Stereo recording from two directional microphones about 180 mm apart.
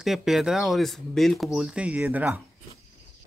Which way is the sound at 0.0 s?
Centre (ahead or behind).